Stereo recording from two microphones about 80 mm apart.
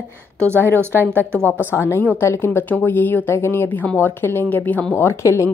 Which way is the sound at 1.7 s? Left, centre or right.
Left.